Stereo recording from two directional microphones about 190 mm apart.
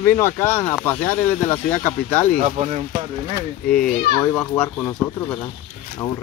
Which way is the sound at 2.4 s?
35° right (ahead or behind).